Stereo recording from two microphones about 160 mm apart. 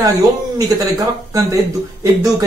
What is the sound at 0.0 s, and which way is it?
Speech, 20° right (ahead or behind).